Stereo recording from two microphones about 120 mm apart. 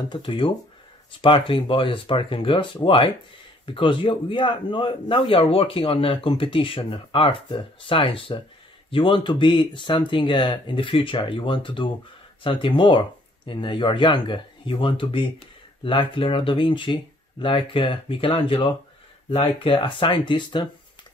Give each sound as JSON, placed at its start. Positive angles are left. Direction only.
{"t": 0.1, "sound": "a man's voice", "side_deg": 45}